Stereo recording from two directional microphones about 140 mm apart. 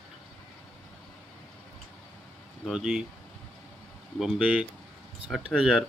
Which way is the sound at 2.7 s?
5° right (ahead or behind).